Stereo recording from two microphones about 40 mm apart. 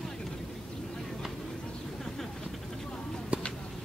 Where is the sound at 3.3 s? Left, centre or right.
Right.